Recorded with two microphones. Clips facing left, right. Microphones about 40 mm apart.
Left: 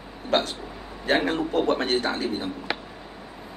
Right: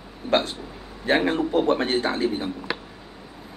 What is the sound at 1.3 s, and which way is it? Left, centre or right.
Speech, right.